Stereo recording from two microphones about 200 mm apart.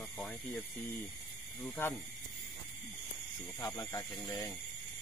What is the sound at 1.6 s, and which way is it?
Speech, 10° left (ahead or behind).